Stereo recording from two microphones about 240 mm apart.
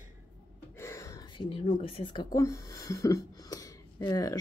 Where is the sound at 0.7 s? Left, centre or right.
Centre.